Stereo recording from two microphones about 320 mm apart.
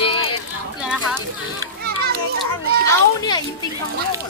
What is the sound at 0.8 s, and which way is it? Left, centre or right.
Speech, centre.